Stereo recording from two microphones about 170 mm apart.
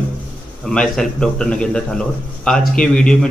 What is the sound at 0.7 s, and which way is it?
A man's voice, 5° left (ahead or behind).